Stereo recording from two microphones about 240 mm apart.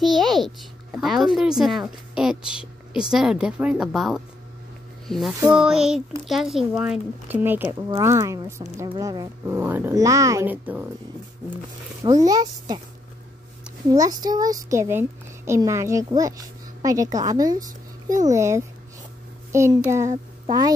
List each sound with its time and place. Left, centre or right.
0.0 s a child's voice: centre
12.0 s speech: centre
13.8 s a woman's voice: centre